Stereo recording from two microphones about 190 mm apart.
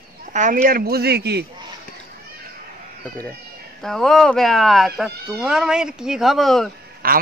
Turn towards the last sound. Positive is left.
turn(degrees=-50)  # may be behind; listen again after turning